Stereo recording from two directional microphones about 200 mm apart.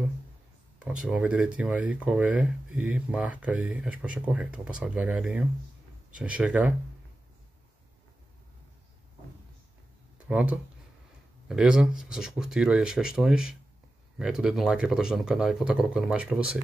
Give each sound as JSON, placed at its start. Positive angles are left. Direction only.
{"t": 1.0, "sound": "speech", "side_deg": -5}
{"t": 10.1, "sound": "a sound", "side_deg": -5}
{"t": 11.4, "sound": "speech", "side_deg": -5}